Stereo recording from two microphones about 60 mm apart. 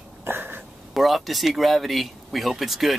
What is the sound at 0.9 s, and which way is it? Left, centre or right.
Speech, centre.